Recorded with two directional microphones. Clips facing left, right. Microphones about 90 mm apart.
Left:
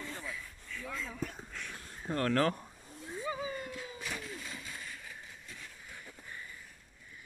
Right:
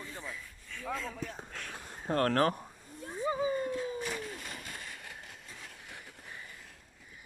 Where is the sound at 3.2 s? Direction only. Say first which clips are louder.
Right 7 dB; 30° right (ahead or behind).